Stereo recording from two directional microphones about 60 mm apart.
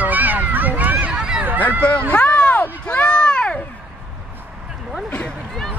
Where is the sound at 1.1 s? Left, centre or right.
Centre.